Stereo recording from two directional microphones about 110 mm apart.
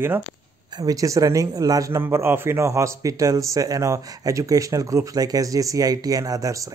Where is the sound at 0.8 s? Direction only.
35° right (ahead or behind).